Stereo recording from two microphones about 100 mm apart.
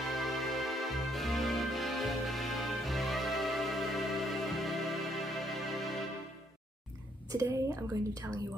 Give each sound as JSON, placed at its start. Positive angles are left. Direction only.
{"t": 0.0, "sound": "music", "side_deg": 0}
{"t": 7.2, "sound": "a woman's voice", "side_deg": -30}